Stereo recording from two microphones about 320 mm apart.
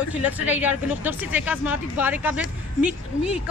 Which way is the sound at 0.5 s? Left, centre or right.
Centre.